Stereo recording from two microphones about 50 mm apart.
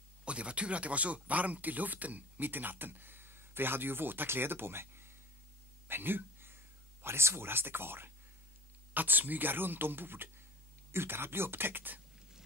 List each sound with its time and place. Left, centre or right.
0.2 s speech: right
8.9 s speech: right